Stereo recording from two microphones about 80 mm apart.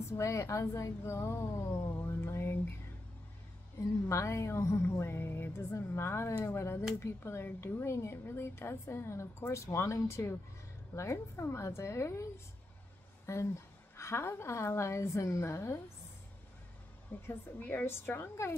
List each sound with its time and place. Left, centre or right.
0.2 s a woman's voice: left
4.1 s a woman's voice: left
13.3 s a woman's voice: left
17.3 s a woman's voice: left